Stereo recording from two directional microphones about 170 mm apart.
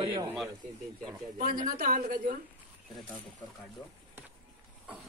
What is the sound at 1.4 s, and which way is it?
Speech, 50° right (ahead or behind).